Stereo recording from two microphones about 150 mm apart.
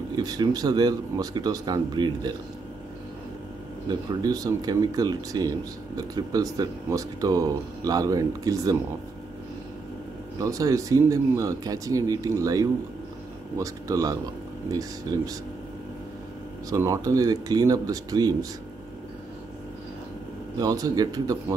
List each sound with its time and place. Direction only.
0.1 s speech: 25° right (ahead or behind)
3.9 s speech: 25° right (ahead or behind)
10.4 s speech: 20° right (ahead or behind)
16.7 s speech: 20° right (ahead or behind)
20.5 s speech: 25° right (ahead or behind)